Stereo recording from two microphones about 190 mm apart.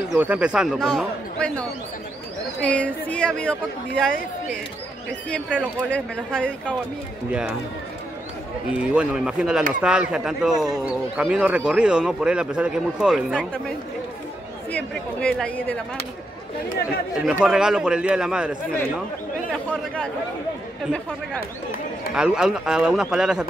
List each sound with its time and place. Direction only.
0.2 s speech: 5° right (ahead or behind)
2.6 s speech: 5° left (ahead or behind)
5.3 s speech: 5° left (ahead or behind)
7.2 s speech: 5° right (ahead or behind)
8.7 s speech: 5° right (ahead or behind)
14.7 s speech: 5° left (ahead or behind)
16.6 s speech: 55° left (ahead or behind)
17.2 s speech: 5° right (ahead or behind)
22.1 s speech: 5° right (ahead or behind)